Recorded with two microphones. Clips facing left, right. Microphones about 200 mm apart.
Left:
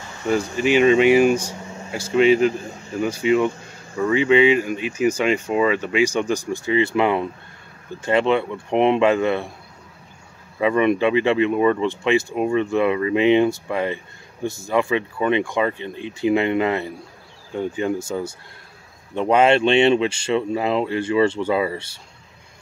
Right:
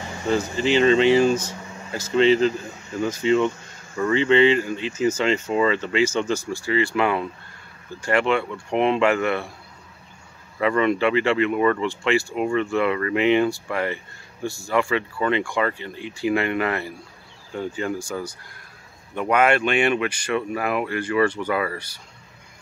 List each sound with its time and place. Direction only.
0.3 s speech: 15° left (ahead or behind)
10.6 s speech: 15° left (ahead or behind)